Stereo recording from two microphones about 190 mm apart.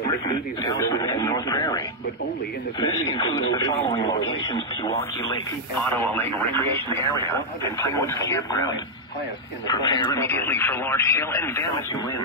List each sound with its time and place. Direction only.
0.1 s radio: 20° left (ahead or behind)
2.8 s speech: 25° left (ahead or behind)
5.8 s speech: 10° left (ahead or behind)
10.2 s speech: 10° left (ahead or behind)